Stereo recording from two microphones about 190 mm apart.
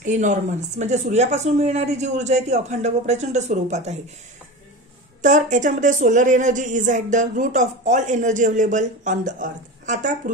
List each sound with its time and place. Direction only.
0.0 s speech: 40° right (ahead or behind)
5.2 s speech: 40° right (ahead or behind)